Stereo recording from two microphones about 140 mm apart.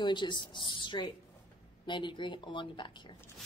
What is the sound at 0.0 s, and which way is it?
Speech, 35° left (ahead or behind).